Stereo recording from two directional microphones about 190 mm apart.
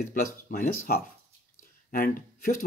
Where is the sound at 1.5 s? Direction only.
50° left (ahead or behind).